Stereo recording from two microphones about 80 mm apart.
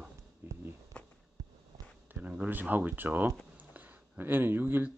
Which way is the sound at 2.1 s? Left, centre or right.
Centre.